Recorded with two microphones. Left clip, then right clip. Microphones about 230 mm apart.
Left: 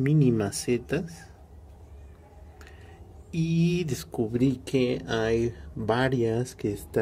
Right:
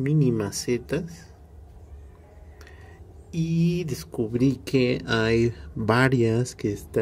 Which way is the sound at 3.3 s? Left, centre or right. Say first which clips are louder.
Even; centre.